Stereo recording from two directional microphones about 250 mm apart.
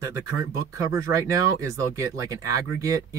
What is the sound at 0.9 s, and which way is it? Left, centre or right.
Speech, centre.